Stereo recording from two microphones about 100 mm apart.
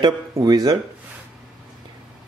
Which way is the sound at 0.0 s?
40° right (ahead or behind).